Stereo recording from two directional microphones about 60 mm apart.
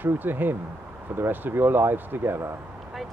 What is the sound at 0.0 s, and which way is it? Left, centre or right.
Speech, right.